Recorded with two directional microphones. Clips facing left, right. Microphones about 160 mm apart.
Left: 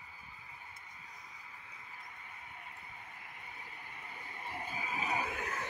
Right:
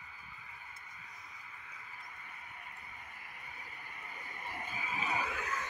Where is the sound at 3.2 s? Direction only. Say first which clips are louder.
Even; 25° left (ahead or behind).